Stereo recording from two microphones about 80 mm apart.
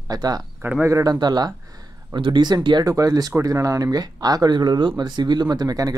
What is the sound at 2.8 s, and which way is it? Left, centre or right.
Speech, right.